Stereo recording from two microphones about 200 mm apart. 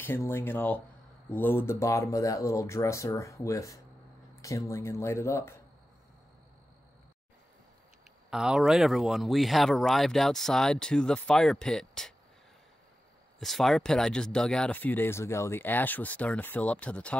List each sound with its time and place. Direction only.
0.0 s speech: 10° left (ahead or behind)
8.3 s speech: 5° right (ahead or behind)
13.4 s speech: centre (ahead or behind)